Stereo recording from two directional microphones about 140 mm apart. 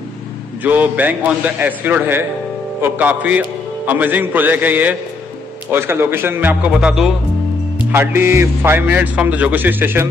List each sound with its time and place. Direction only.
0.7 s a man's voice: 10° right (ahead or behind)
7.9 s a man's voice: 15° right (ahead or behind)